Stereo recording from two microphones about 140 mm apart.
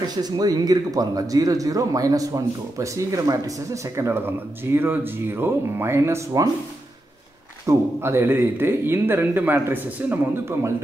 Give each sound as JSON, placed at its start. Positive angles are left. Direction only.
{"t": 0.1, "sound": "speech", "side_deg": -30}
{"t": 7.6, "sound": "speech", "side_deg": -15}